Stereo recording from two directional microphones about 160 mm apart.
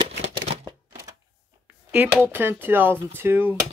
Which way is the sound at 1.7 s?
10° right (ahead or behind).